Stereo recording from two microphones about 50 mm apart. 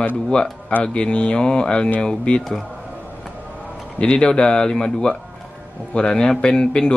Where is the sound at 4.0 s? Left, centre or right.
Centre.